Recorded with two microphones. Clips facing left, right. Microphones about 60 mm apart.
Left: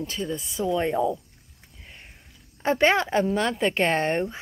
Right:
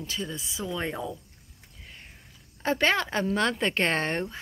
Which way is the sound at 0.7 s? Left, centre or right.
Centre.